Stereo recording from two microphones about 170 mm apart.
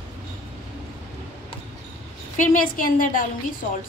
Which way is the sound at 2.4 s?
55° left (ahead or behind).